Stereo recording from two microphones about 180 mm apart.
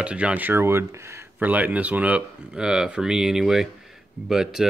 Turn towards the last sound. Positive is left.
turn(degrees=-5)  # may be behind; listen again after turning